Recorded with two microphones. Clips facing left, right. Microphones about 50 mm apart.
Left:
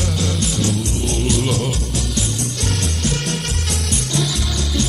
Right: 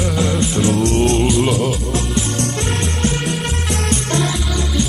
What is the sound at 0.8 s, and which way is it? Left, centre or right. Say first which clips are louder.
Music: right 8 dB; right.